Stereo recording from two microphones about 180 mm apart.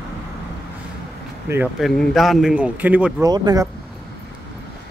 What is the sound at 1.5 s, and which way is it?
Speech, 15° right (ahead or behind).